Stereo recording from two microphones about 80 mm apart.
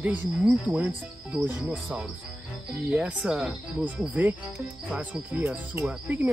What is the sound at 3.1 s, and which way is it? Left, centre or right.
Speech, centre.